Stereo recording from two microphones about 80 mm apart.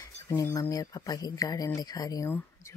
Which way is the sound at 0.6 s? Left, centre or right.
Left.